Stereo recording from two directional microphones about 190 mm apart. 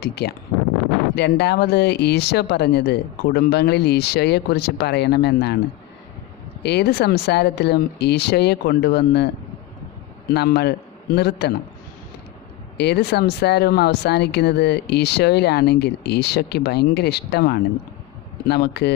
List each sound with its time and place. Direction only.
0.0 s speech: 60° left (ahead or behind)
6.6 s speech: 60° left (ahead or behind)
10.3 s speech: 60° left (ahead or behind)
12.7 s speech: 60° left (ahead or behind)